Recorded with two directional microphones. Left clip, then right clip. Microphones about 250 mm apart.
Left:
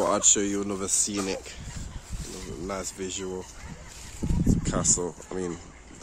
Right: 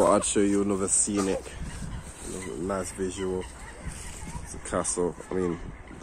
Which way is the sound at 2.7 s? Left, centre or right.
Centre.